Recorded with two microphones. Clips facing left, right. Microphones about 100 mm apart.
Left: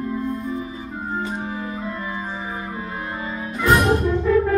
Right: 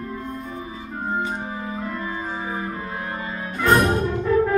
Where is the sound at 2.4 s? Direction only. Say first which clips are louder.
Right 1 dB; centre (ahead or behind).